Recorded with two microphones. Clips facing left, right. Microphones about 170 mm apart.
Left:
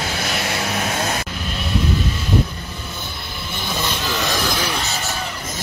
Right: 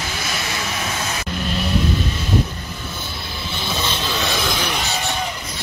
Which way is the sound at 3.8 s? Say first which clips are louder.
Left 1 dB; 10° left (ahead or behind).